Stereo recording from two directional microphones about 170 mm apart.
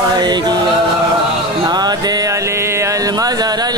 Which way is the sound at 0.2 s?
25° right (ahead or behind).